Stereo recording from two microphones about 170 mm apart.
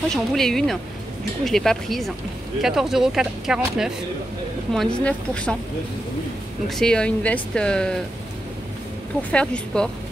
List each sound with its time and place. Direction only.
0.1 s speech: centre (ahead or behind)
6.7 s speech: 5° left (ahead or behind)
9.3 s speech: 5° left (ahead or behind)